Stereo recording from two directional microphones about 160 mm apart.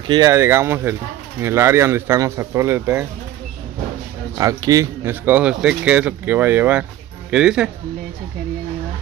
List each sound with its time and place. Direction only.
0.0 s speech: 25° right (ahead or behind)
4.4 s speech: 20° right (ahead or behind); by 7.7 s 5° right (ahead or behind)